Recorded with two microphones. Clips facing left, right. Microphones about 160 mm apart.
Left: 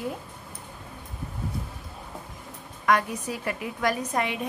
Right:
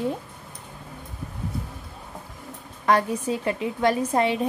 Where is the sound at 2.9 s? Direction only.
30° right (ahead or behind).